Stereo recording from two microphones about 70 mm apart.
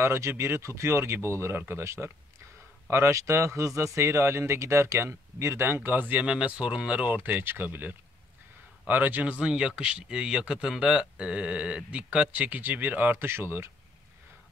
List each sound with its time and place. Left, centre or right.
0.0 s speech: right
5.8 s speech: right
7.2 s speech: right